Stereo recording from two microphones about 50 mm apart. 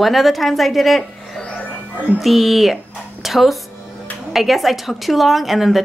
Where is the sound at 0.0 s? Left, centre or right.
Centre.